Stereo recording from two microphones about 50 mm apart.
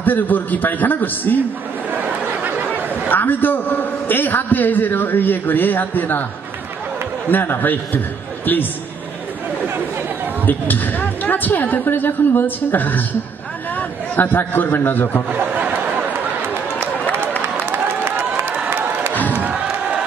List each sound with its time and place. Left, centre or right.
0.0 s a man's voice: left
1.9 s a sound: right
3.1 s a man's voice: left
7.2 s a man's voice: left
10.4 s a man's voice: left
15.2 s a sound: right
17.6 s a sound: right
18.7 s crowd: right
19.4 s crowd: centre